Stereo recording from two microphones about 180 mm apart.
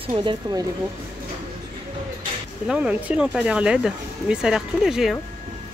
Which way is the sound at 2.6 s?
5° right (ahead or behind).